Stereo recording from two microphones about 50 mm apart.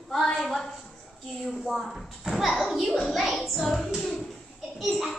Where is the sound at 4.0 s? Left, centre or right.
Centre.